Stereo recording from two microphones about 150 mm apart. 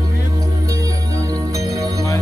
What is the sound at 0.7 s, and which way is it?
Music, 25° right (ahead or behind).